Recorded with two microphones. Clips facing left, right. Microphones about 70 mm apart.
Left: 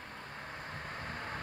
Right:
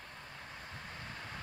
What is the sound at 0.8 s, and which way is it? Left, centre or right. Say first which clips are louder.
Vehicle: left 6 dB; left.